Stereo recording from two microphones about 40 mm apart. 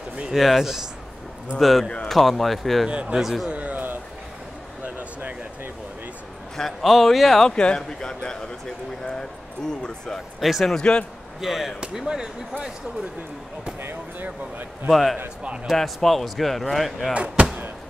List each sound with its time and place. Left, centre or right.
0.3 s speech: centre
1.6 s speech: centre
2.9 s speech: right
3.2 s speech: centre
3.5 s a sound: right
4.8 s a sound: right
6.8 s speech: centre
7.4 s speech: left
9.7 s speech: centre
10.4 s speech: centre
10.7 s speech: left
11.4 s speech: centre
14.9 s speech: centre
17.1 s speech: right